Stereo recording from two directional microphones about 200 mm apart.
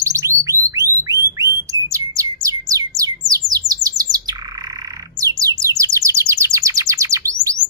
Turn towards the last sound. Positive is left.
turn(degrees=-15)  # may be behind; listen again after turning